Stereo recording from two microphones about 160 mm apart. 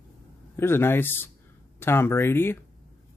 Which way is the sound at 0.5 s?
15° left (ahead or behind).